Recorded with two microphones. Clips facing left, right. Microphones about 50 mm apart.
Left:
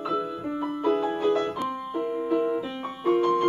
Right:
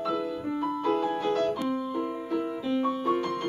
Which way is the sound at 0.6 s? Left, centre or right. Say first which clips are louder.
Left 2 dB; centre.